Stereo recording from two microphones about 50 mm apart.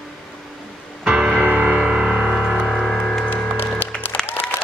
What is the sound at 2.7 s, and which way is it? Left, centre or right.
Music, centre.